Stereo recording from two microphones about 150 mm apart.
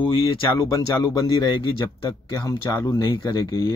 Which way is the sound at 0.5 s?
25° left (ahead or behind).